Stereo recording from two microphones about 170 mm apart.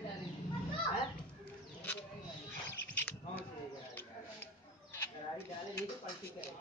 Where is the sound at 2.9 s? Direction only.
10° left (ahead or behind).